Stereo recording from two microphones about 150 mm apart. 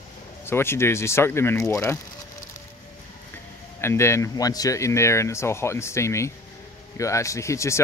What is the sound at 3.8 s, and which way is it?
Speech, 20° left (ahead or behind).